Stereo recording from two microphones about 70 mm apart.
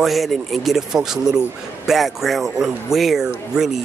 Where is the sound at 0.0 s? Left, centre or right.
Centre.